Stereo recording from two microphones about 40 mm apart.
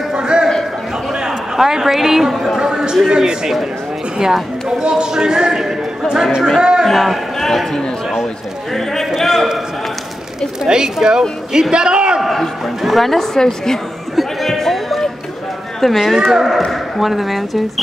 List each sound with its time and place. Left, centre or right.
0.1 s a sound: right
1.2 s a man's voice: centre
2.6 s a sound: centre
3.1 s a man's voice: centre
6.9 s a man's voice: centre
9.2 s a man's voice: centre
10.6 s a man's voice: centre
12.2 s a woman's voice: centre
14.1 s chatter: centre
15.8 s speech: centre